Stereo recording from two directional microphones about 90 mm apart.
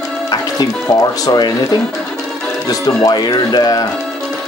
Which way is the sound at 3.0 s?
50° left (ahead or behind).